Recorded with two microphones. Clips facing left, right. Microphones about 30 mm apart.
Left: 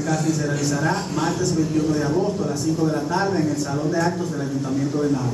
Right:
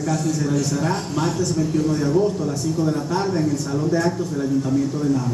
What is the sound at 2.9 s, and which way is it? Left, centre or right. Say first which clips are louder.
Speech: left 1 dB; centre.